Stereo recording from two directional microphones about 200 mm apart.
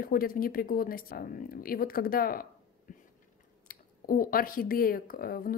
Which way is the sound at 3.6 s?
45° left (ahead or behind).